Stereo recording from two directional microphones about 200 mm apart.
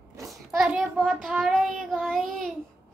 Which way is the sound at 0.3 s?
Centre (ahead or behind).